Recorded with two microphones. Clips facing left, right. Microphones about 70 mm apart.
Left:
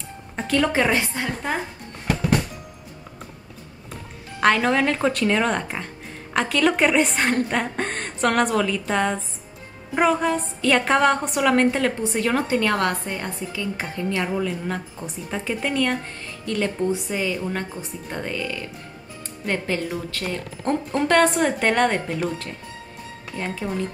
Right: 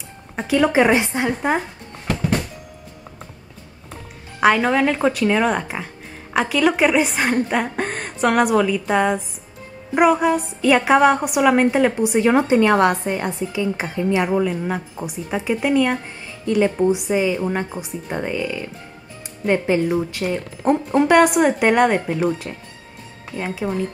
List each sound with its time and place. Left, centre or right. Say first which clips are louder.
0.4 s a woman's voice: right 5 dB; centre
4.4 s a woman's voice: right 3 dB; centre
23.3 s a woman's voice: right 4 dB; centre